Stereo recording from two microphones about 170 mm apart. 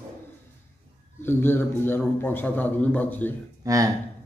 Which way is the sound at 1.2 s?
10° left (ahead or behind).